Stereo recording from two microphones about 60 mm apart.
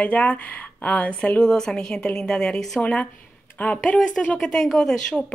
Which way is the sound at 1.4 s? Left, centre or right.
Centre.